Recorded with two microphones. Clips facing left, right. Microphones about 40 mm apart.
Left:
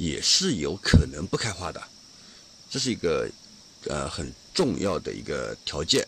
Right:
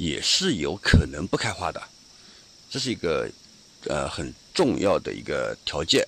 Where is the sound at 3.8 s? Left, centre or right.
Right.